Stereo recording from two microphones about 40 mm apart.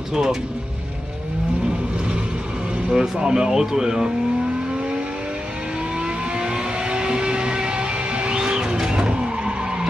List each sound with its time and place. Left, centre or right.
0.1 s speech: centre
2.9 s speech: centre
5.9 s vehicle: right